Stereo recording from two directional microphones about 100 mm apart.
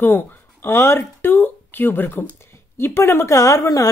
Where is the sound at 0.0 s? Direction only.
20° left (ahead or behind).